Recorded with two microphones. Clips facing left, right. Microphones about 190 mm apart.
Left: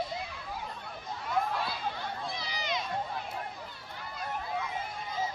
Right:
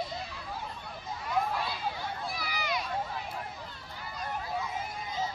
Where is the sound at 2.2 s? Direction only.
20° left (ahead or behind).